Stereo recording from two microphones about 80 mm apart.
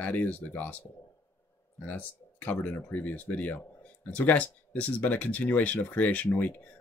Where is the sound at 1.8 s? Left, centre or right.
Centre.